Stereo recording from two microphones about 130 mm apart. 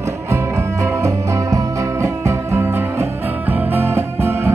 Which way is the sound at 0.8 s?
25° right (ahead or behind).